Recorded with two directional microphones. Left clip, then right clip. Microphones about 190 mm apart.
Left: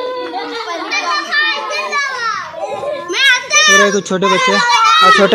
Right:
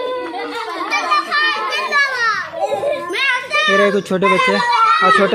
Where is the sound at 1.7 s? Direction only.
60° right (ahead or behind).